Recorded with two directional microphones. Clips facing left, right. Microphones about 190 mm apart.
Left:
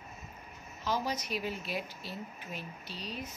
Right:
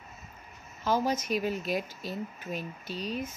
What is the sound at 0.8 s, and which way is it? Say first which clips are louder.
Speech: right 6 dB; 50° right (ahead or behind).